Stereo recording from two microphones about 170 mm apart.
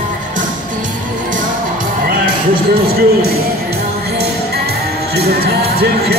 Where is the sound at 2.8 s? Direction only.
65° right (ahead or behind).